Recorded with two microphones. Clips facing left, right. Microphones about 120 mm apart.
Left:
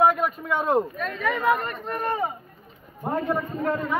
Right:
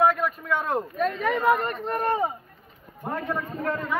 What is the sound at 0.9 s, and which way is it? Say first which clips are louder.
Speech: right 3 dB; 35° right (ahead or behind).